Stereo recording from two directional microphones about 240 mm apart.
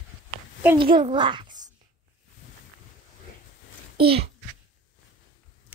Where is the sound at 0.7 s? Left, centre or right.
Right.